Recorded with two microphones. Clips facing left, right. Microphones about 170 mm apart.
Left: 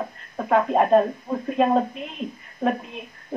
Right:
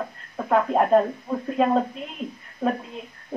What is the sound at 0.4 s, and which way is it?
Speech, 15° left (ahead or behind).